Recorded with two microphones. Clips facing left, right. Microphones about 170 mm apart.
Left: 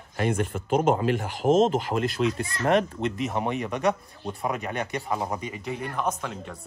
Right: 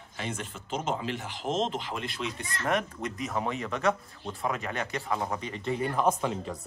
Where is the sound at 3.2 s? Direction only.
20° left (ahead or behind).